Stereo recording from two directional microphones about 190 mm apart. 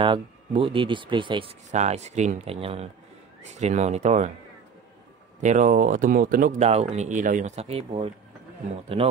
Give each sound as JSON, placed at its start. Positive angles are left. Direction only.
{"t": 0.0, "sound": "speech", "side_deg": -30}
{"t": 5.4, "sound": "speech", "side_deg": -40}